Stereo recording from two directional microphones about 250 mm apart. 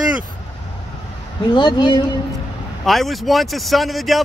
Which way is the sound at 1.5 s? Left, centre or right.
Centre.